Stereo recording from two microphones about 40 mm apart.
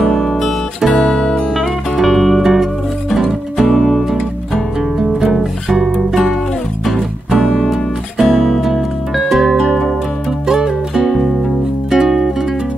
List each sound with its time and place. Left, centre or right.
0.0 s music: centre
1.0 s music: centre
1.5 s music: centre
4.9 s music: centre
5.9 s music: centre
7.4 s music: centre
9.6 s music: centre
10.4 s music: centre